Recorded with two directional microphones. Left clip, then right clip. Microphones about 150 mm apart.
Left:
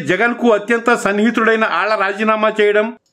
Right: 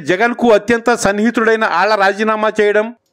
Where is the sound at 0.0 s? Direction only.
35° right (ahead or behind).